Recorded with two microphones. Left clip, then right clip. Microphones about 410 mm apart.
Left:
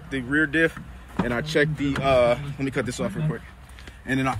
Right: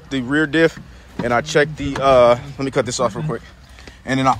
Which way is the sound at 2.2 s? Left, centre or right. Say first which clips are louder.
Right 8 dB; right.